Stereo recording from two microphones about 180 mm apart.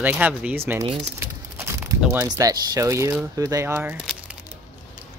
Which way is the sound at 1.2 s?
15° right (ahead or behind).